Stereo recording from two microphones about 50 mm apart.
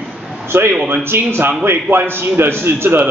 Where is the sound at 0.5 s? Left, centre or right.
Right.